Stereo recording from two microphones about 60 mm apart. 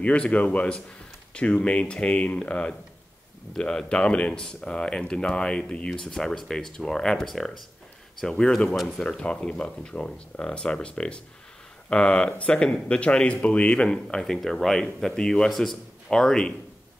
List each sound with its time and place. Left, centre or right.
0.3 s speech: left